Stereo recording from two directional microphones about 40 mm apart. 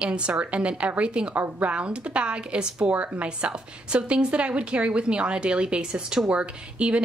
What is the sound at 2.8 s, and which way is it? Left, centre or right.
A woman's voice, right.